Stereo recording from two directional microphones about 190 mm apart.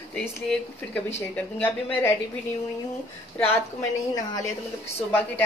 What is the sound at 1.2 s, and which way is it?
Speech, 10° left (ahead or behind).